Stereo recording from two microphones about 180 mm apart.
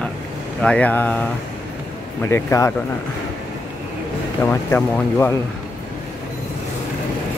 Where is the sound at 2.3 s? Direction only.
15° left (ahead or behind).